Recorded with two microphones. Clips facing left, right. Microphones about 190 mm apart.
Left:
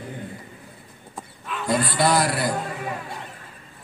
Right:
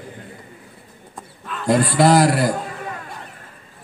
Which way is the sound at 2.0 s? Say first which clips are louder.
Right 7 dB; 40° right (ahead or behind).